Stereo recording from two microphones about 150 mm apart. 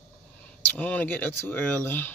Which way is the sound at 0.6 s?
10° left (ahead or behind).